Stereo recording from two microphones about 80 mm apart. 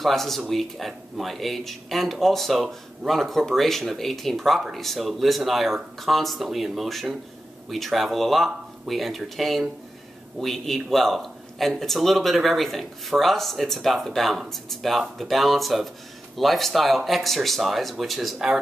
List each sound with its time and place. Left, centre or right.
0.0 s speech: centre